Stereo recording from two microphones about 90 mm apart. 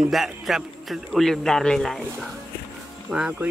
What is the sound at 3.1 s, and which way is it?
Speech, 10° right (ahead or behind).